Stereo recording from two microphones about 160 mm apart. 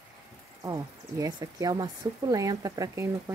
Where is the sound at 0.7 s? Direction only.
20° right (ahead or behind).